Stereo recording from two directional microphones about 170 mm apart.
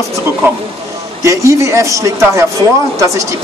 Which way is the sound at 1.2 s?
15° right (ahead or behind).